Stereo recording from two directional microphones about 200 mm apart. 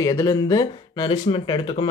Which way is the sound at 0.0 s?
15° left (ahead or behind).